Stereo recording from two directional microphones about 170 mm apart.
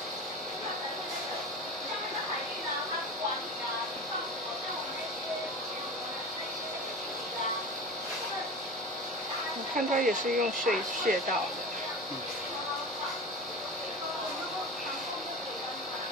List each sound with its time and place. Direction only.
9.8 s speech: 55° right (ahead or behind)